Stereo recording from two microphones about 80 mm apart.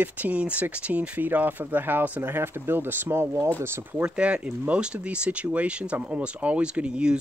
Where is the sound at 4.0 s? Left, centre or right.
Centre.